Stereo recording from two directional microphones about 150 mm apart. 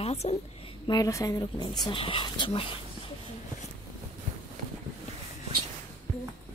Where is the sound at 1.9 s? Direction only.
35° left (ahead or behind).